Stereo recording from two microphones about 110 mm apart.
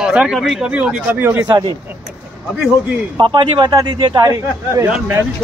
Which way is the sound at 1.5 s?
40° right (ahead or behind).